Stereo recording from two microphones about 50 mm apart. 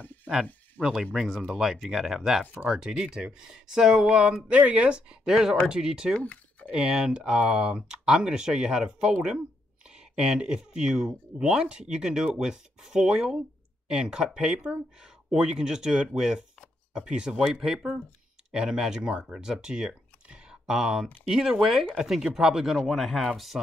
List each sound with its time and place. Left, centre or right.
0.0 s a sound: left
0.8 s speech: left
1.2 s speech: centre
10.1 s speech: centre